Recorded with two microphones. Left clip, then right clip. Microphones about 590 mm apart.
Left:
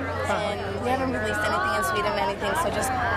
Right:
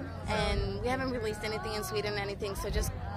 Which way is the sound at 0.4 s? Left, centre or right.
Right.